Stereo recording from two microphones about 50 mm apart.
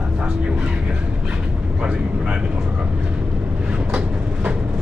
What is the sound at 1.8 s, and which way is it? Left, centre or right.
Vehicle, right.